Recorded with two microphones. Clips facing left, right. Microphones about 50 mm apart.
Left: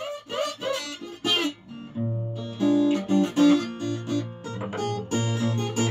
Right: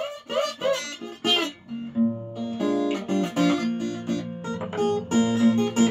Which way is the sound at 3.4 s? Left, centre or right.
Centre.